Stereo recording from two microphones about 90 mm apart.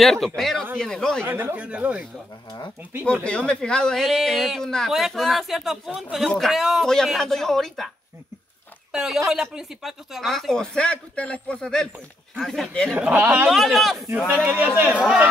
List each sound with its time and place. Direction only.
0.0 s speech: centre (ahead or behind)
1.2 s speech: 20° right (ahead or behind)
3.3 s speech: 10° left (ahead or behind)
8.9 s speech: 5° right (ahead or behind)
12.9 s speech: 20° right (ahead or behind)
13.5 s speech: centre (ahead or behind)
14.3 s a man's voice: 20° right (ahead or behind)